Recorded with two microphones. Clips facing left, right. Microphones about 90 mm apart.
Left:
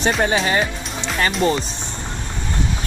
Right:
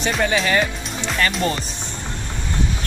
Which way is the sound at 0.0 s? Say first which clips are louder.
Left 2 dB; 40° left (ahead or behind).